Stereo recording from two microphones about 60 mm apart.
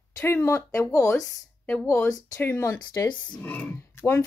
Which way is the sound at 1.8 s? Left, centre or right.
Left.